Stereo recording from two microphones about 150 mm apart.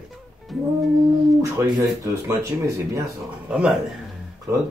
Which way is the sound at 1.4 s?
20° right (ahead or behind).